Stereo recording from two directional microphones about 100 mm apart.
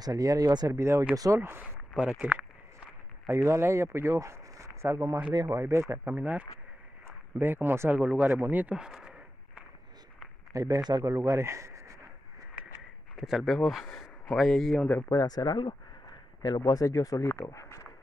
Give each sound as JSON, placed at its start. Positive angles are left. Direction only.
{"t": 0.0, "sound": "speech", "side_deg": -35}
{"t": 0.7, "sound": "speech", "side_deg": -30}
{"t": 1.4, "sound": "speech", "side_deg": -20}
{"t": 2.0, "sound": "speech", "side_deg": -5}
{"t": 3.3, "sound": "speech", "side_deg": -30}
{"t": 10.5, "sound": "speech", "side_deg": -35}
{"t": 11.1, "sound": "speech", "side_deg": -30}
{"t": 13.1, "sound": "speech", "side_deg": 0}
{"t": 15.0, "sound": "speech", "side_deg": 40}